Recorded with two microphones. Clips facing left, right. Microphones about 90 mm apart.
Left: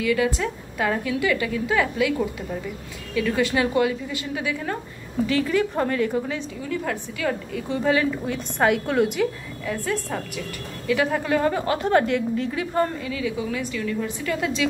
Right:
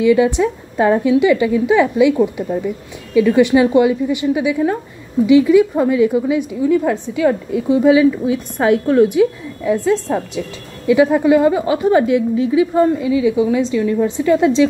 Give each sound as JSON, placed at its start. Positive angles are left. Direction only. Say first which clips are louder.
{"t": 0.0, "sound": "a woman's voice", "louder": "right 10 dB", "side_deg": -20}
{"t": 9.2, "sound": "a woman's voice", "louder": "right 9 dB", "side_deg": -15}